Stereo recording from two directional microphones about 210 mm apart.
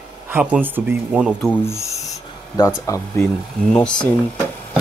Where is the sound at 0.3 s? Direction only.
10° right (ahead or behind).